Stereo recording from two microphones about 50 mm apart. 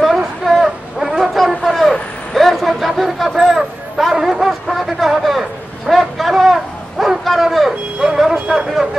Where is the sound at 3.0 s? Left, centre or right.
Centre.